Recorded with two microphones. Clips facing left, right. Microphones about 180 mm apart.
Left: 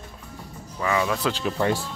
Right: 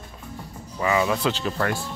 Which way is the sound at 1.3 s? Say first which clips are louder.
Left 1 dB; 10° left (ahead or behind).